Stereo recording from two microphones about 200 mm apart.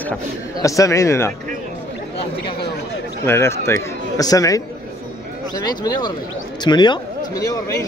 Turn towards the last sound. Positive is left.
turn(degrees=15)  # may be behind; listen again after turning